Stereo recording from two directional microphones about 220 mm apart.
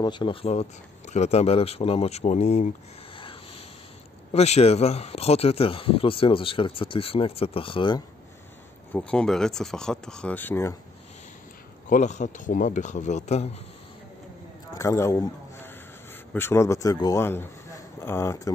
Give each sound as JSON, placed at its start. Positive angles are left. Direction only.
{"t": 0.0, "sound": "speech", "side_deg": 20}
{"t": 4.3, "sound": "speech", "side_deg": 30}
{"t": 8.9, "sound": "speech", "side_deg": 5}
{"t": 11.9, "sound": "speech", "side_deg": 35}
{"t": 14.7, "sound": "a sound", "side_deg": 15}
{"t": 16.3, "sound": "speech", "side_deg": 10}